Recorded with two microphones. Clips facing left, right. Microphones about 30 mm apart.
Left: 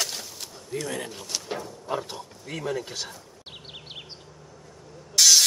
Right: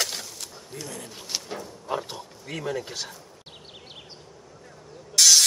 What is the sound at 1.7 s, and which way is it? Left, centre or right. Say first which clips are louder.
Speech: even; centre.